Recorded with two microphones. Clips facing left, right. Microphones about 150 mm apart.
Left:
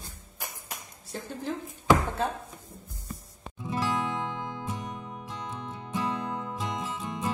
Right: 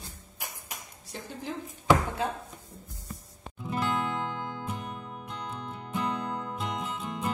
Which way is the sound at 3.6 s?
15° left (ahead or behind).